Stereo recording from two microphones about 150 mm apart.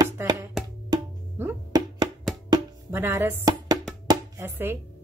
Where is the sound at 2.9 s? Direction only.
15° right (ahead or behind).